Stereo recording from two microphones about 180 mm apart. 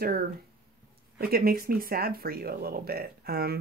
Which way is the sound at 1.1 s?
55° right (ahead or behind).